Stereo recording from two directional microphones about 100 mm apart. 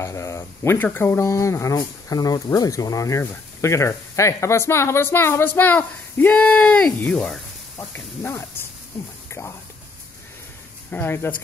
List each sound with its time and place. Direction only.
0.0 s speech: 30° left (ahead or behind); by 7.4 s 5° left (ahead or behind)
7.9 s speech: 20° left (ahead or behind)
10.9 s speech: 20° left (ahead or behind)